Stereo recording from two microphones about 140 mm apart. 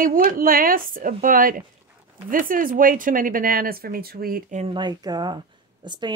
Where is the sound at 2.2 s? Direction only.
75° right (ahead or behind).